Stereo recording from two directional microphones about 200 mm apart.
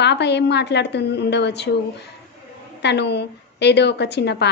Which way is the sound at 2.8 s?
55° left (ahead or behind).